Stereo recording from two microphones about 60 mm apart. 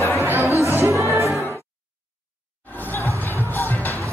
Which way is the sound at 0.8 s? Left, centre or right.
Right.